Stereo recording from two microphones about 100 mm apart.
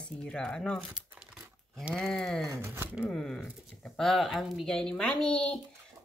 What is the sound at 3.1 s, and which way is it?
Speech, 5° left (ahead or behind).